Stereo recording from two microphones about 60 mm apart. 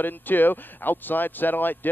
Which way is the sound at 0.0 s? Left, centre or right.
Left.